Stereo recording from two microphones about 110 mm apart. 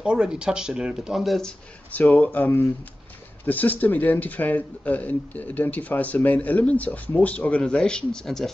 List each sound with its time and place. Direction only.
0.0 s speech: 5° right (ahead or behind)
1.9 s speech: 15° left (ahead or behind)